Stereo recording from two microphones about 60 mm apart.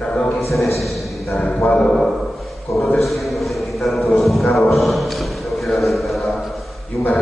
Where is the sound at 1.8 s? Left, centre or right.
Centre.